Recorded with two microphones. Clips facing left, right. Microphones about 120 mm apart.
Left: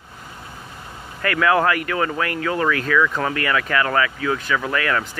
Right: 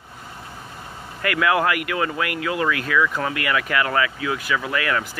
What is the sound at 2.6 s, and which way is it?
Speech, 15° right (ahead or behind).